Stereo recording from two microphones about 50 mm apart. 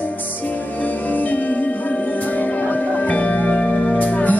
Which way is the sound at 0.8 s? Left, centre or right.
Left.